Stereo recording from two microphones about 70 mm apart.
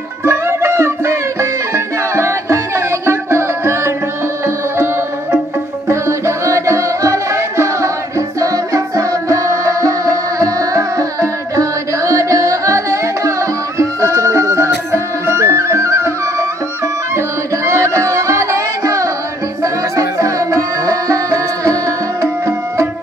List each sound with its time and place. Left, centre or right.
0.2 s music: right
5.9 s music: right
17.6 s music: right